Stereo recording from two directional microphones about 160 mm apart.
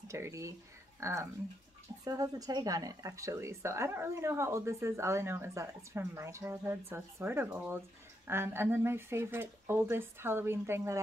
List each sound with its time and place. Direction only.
0.1 s speech: 20° right (ahead or behind)